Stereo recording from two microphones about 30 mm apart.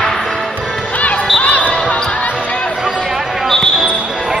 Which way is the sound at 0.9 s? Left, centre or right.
Left.